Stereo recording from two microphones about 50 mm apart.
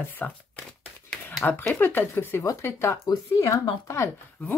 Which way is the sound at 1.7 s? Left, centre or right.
Left.